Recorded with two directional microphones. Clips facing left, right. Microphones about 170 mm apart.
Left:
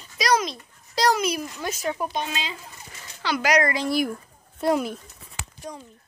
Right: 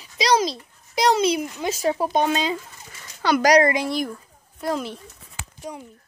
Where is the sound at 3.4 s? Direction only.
35° right (ahead or behind).